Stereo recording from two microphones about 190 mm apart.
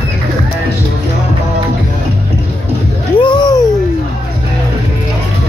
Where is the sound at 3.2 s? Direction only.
25° left (ahead or behind).